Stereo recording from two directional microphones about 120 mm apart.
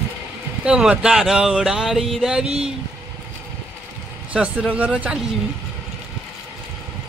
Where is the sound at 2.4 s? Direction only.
55° right (ahead or behind).